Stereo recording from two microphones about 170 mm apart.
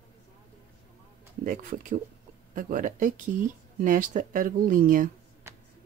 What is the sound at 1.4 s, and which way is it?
Speech, 50° right (ahead or behind).